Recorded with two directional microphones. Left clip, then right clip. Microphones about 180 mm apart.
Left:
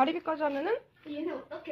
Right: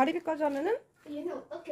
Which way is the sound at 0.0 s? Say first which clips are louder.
Even; 35° right (ahead or behind).